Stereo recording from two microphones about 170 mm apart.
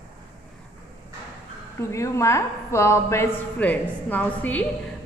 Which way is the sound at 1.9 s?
15° left (ahead or behind).